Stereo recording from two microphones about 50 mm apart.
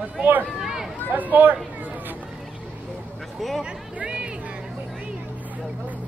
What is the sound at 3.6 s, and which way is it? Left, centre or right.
Music, centre.